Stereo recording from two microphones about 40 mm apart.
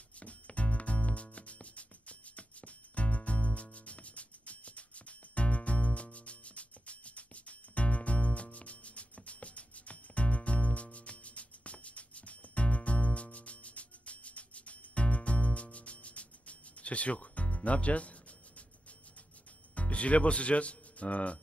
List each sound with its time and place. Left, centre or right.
0.2 s music: left
19.7 s speech: left